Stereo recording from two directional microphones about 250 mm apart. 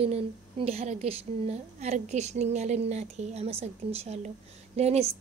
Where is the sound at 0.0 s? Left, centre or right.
Right.